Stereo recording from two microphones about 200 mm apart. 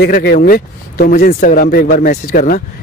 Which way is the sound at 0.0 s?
50° left (ahead or behind).